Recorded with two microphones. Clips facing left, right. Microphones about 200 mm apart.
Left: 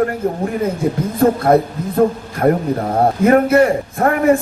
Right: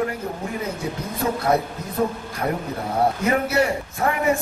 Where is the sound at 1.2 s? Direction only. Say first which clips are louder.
Left 9 dB; 55° left (ahead or behind).